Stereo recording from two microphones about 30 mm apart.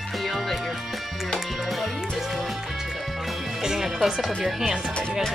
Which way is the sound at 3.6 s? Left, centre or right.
Centre.